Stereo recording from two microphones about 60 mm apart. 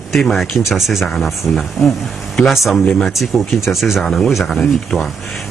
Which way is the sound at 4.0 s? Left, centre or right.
Centre.